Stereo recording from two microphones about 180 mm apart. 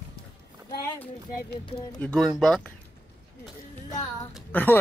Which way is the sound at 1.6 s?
25° left (ahead or behind).